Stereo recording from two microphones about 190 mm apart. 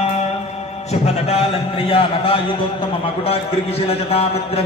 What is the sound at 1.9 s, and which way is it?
Speech, 30° left (ahead or behind).